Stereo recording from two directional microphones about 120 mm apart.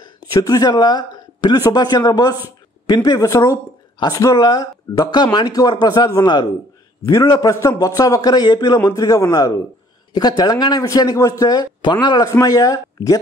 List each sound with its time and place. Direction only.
0.0 s speech: 30° left (ahead or behind)